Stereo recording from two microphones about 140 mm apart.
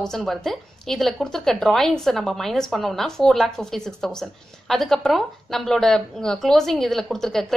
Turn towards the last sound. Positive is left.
turn(degrees=0)  # may be behind; listen again after turning